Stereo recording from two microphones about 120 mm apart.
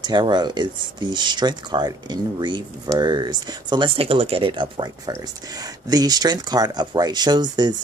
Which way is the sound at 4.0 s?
55° right (ahead or behind).